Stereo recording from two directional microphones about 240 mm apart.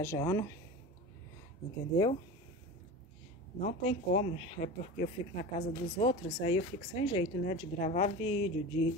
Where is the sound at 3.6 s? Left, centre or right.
Left.